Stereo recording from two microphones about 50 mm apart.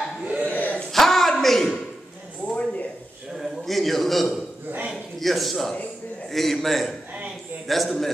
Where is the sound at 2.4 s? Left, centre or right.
Left.